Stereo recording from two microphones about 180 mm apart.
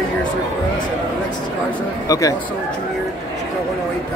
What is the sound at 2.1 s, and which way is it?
Speech, 20° left (ahead or behind).